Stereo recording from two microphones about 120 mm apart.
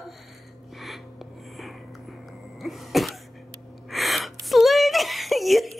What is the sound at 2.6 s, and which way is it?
Throat clearing, centre (ahead or behind).